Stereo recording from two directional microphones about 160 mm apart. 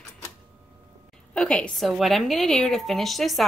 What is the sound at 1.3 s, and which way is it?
A woman's voice, 5° left (ahead or behind).